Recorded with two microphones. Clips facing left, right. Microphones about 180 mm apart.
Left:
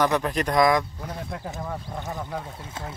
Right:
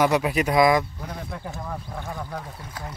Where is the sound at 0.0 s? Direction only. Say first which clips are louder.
Right 2 dB; 10° right (ahead or behind).